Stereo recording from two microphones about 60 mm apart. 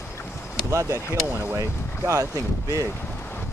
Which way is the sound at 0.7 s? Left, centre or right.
Right.